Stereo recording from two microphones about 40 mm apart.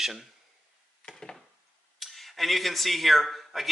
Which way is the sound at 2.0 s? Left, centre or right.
Centre.